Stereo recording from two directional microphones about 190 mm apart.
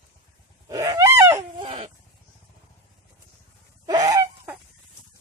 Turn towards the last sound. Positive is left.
turn(degrees=-15)  # may be behind; listen again after turning